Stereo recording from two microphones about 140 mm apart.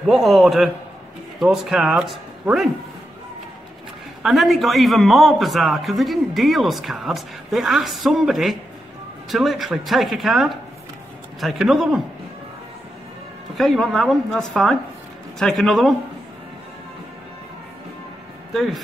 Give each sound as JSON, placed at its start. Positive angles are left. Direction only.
{"t": 0.0, "sound": "a man's voice", "side_deg": 0}
{"t": 4.2, "sound": "a man's voice", "side_deg": 0}
{"t": 13.6, "sound": "a man's voice", "side_deg": 0}
{"t": 18.5, "sound": "speech", "side_deg": 0}